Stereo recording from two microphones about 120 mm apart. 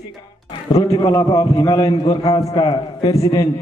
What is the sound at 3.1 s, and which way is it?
Speech, 30° left (ahead or behind).